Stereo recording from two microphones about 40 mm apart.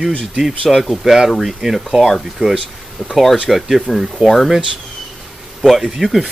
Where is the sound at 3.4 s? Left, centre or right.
Centre.